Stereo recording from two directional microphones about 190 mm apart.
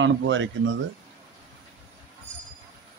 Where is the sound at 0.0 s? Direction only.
85° right.